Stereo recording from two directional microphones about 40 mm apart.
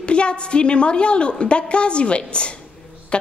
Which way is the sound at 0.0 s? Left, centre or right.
Left.